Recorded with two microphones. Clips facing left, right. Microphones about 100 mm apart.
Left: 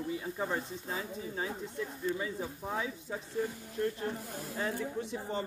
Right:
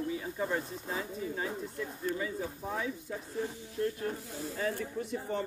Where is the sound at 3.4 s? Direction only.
55° left (ahead or behind).